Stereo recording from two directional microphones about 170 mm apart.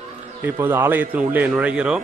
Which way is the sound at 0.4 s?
15° right (ahead or behind).